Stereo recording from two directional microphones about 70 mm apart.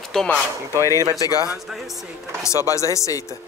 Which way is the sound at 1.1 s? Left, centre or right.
Left.